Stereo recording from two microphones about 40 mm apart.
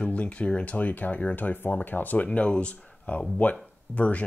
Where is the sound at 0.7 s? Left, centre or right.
Left.